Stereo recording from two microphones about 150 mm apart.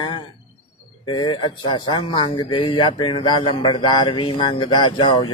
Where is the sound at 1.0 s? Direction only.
30° left (ahead or behind).